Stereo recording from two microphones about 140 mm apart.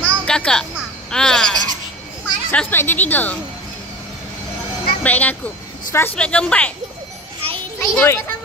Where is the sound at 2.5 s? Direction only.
15° left (ahead or behind).